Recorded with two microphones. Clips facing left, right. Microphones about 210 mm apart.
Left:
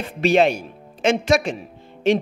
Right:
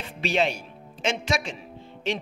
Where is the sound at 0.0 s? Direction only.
50° left (ahead or behind).